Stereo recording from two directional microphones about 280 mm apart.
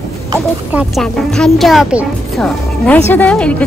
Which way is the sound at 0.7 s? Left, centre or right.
Centre.